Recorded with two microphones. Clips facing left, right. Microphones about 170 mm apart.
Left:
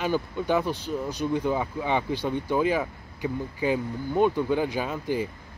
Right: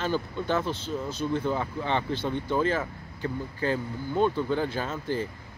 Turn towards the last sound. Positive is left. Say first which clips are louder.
# left 2 dB
turn(degrees=15)  # may be behind; listen again after turning